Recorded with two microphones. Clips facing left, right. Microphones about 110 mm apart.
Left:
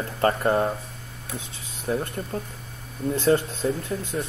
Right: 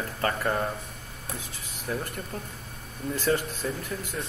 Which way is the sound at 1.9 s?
30° left (ahead or behind).